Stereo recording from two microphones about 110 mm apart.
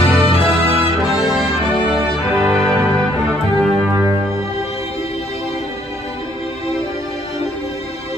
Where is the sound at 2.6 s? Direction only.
30° right (ahead or behind).